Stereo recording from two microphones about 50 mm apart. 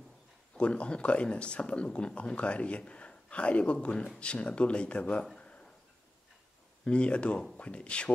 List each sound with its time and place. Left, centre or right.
0.6 s speech: left
5.4 s a sound: left
6.8 s speech: left